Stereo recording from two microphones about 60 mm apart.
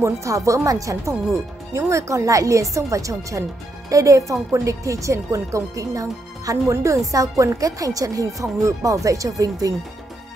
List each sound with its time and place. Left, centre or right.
0.0 s speech: right
6.7 s speech: right
7.1 s speech: right
7.6 s speech: right